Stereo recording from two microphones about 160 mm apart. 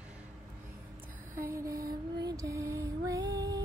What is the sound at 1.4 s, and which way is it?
Music, 20° right (ahead or behind).